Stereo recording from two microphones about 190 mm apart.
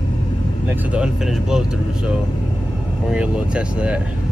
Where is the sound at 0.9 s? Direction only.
5° right (ahead or behind).